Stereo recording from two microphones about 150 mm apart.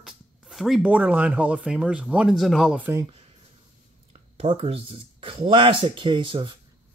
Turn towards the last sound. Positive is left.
turn(degrees=-35)  # may be behind; listen again after turning